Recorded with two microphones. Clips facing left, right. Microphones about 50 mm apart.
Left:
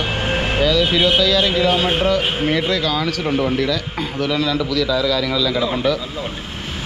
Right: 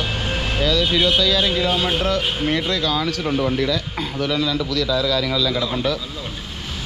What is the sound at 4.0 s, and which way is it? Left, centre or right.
Speech, centre.